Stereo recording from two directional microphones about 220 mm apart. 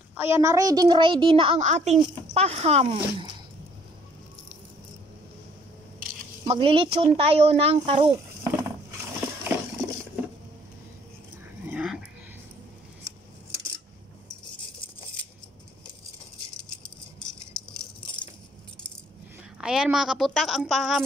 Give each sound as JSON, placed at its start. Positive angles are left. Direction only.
{"t": 0.1, "sound": "a woman's voice", "side_deg": -10}
{"t": 6.4, "sound": "a woman's voice", "side_deg": -25}
{"t": 11.6, "sound": "dog", "side_deg": -5}
{"t": 17.2, "sound": "rattle", "side_deg": 5}
{"t": 19.6, "sound": "a woman's voice", "side_deg": -5}